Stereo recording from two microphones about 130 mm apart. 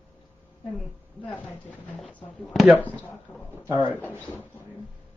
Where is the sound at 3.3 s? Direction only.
15° left (ahead or behind).